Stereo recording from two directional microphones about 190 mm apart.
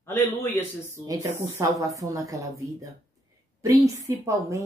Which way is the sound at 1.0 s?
20° right (ahead or behind).